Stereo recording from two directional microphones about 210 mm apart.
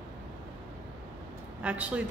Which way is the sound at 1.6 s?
5° right (ahead or behind).